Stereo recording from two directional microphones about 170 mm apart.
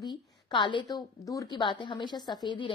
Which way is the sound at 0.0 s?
25° left (ahead or behind).